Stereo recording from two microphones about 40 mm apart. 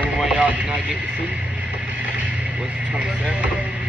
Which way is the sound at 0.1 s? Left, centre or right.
Right.